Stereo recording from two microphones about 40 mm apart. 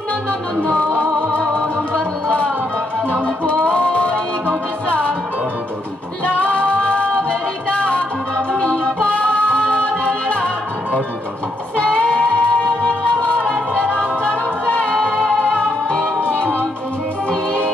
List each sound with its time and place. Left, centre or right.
1.4 s music: centre
6.2 s music: left